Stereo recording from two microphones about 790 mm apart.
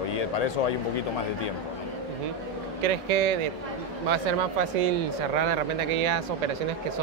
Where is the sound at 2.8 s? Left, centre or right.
Right.